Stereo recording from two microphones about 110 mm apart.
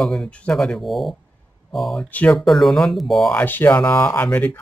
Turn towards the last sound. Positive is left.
turn(degrees=15)  # may be behind; listen again after turning